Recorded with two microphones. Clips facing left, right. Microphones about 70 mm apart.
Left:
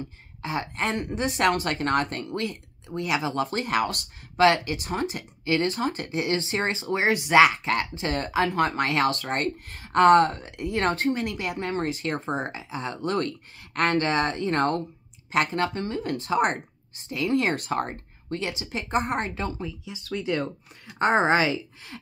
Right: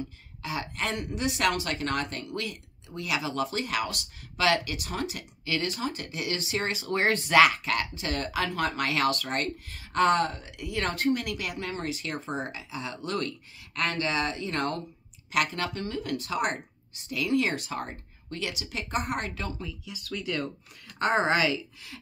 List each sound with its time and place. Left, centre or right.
0.0 s a woman's voice: left
6.9 s a woman's voice: centre; by 9.5 s left
9.7 s a woman's voice: left
18.3 s a woman's voice: left